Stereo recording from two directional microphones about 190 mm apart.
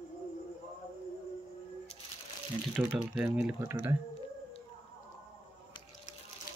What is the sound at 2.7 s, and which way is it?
Speech, centre (ahead or behind).